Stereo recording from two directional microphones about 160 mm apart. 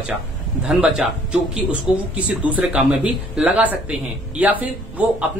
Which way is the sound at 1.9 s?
30° left (ahead or behind).